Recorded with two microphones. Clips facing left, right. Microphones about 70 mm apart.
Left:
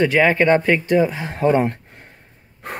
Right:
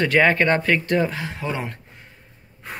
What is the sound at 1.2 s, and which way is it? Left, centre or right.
Speech, left.